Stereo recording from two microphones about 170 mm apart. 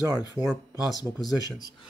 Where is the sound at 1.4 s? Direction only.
20° left (ahead or behind).